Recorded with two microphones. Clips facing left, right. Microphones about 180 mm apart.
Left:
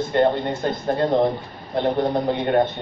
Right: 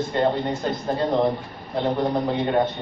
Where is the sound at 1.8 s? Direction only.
60° left (ahead or behind).